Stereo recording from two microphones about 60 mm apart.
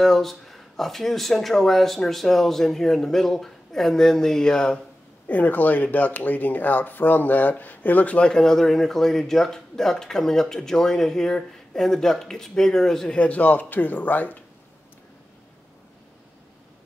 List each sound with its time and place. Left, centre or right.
0.0 s speech: centre
5.3 s speech: left
8.3 s speech: centre
13.2 s speech: left